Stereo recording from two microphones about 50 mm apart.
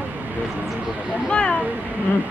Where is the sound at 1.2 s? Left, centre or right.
Left.